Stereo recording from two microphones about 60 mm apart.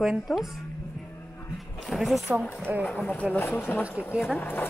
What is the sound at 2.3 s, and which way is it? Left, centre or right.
Speech, right.